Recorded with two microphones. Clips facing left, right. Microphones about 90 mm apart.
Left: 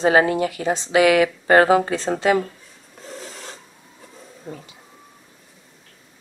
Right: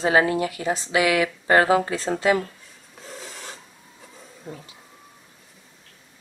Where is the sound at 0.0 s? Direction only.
25° left (ahead or behind).